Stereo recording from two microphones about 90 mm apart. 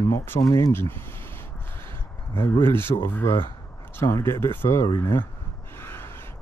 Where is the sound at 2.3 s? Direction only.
25° left (ahead or behind).